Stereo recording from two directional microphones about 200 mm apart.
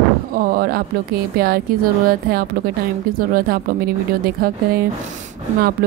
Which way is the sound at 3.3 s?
50° right (ahead or behind).